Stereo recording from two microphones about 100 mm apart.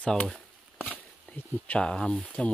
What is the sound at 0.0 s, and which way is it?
Speech, 10° left (ahead or behind).